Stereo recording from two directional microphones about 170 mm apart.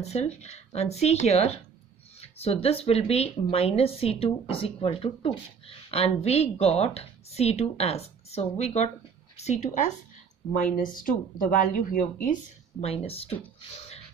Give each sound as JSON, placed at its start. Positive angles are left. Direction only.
{"t": 0.0, "sound": "speech", "side_deg": 40}
{"t": 10.5, "sound": "speech", "side_deg": 50}
{"t": 12.8, "sound": "speech", "side_deg": 35}